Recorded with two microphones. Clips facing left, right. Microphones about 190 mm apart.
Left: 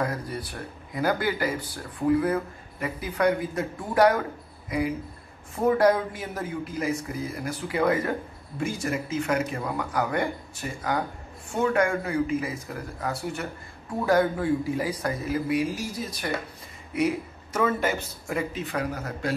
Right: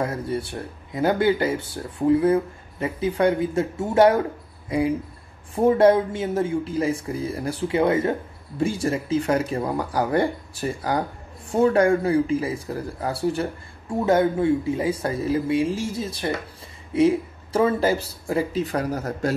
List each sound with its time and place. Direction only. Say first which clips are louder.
0.0 s speech: right 4 dB; 25° right (ahead or behind); by 19.3 s 40° right (ahead or behind)